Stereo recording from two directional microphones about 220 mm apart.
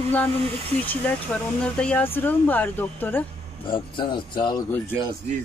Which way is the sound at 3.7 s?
20° left (ahead or behind).